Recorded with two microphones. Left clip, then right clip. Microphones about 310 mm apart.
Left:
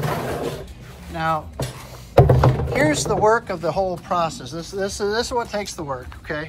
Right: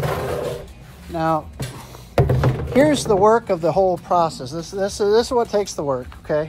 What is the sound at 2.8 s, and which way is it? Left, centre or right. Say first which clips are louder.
Speech: right 4 dB; right.